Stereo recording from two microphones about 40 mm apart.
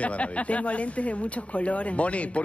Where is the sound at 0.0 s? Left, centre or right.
Left.